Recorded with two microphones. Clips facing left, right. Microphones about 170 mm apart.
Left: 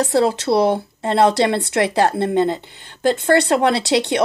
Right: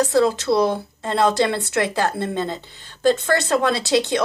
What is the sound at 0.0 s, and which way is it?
Speech, 25° left (ahead or behind).